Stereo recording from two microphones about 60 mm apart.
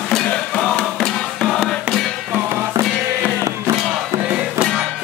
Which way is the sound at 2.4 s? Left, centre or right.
Right.